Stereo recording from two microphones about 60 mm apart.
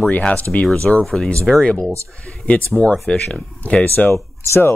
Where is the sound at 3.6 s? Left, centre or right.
Left.